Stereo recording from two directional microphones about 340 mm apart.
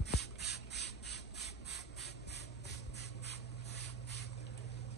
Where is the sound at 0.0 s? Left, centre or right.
Left.